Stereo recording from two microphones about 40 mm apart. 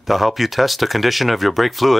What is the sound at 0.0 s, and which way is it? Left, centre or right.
Speech, centre.